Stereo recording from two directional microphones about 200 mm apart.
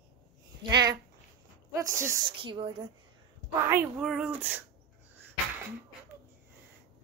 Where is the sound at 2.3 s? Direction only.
25° right (ahead or behind).